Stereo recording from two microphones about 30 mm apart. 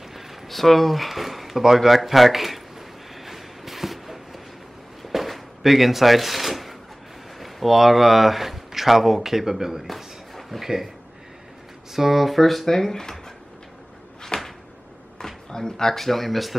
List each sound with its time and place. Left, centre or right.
0.5 s speech: centre
3.2 s a sound: centre
7.3 s speech: centre
11.9 s speech: centre
14.3 s a sound: left
15.1 s speech: left; by 16.5 s centre